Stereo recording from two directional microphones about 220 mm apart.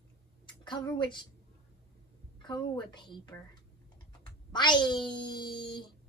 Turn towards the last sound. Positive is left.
turn(degrees=20)  # may be behind; listen again after turning